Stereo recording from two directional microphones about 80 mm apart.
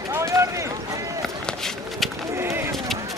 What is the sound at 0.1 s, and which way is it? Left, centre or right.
Run, right.